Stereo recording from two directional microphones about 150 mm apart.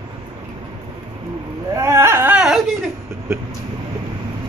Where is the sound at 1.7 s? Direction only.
20° right (ahead or behind).